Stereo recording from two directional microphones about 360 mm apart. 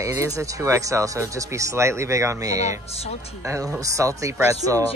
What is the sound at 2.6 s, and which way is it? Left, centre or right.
Speech, centre.